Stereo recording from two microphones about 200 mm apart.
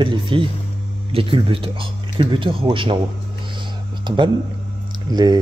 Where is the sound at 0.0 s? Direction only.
25° right (ahead or behind).